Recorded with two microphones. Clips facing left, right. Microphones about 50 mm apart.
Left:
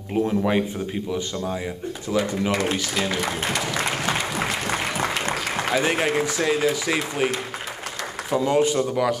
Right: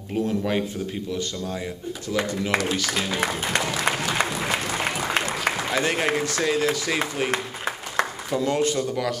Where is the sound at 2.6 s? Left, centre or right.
Left.